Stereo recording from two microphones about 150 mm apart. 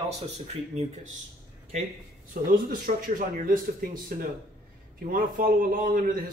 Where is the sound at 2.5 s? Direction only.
70° right (ahead or behind).